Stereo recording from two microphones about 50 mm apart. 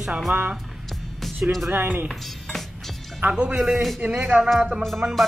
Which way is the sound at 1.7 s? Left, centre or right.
Right.